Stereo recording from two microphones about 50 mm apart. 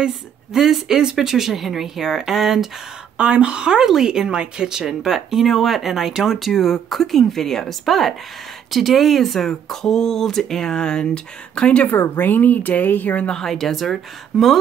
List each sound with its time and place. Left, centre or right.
0.1 s speech: centre
3.2 s speech: right
3.8 s speech: centre; by 11.9 s left
11.9 s speech: left
13.3 s speech: centre